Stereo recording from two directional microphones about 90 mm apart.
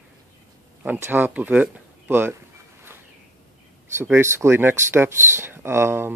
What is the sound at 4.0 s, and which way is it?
Speech, 30° right (ahead or behind).